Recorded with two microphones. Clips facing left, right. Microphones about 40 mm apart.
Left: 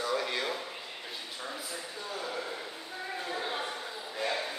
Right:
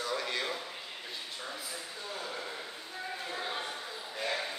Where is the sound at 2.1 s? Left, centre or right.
Centre.